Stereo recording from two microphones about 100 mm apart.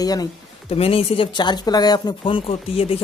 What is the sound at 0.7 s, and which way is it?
Speech, 70° left (ahead or behind).